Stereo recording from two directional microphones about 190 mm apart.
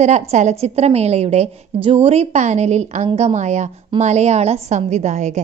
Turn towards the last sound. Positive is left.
turn(degrees=-40)  # may be behind; listen again after turning